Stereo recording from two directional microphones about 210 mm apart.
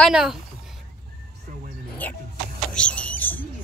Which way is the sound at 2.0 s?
10° left (ahead or behind).